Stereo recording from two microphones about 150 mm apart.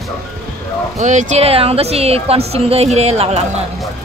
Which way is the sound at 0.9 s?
50° right (ahead or behind).